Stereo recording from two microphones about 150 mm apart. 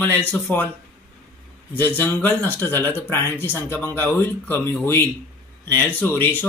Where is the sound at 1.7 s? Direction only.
15° left (ahead or behind).